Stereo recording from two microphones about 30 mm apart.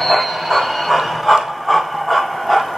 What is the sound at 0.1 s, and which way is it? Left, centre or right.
Train, centre.